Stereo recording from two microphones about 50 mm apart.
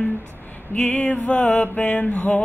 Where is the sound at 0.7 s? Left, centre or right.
Left.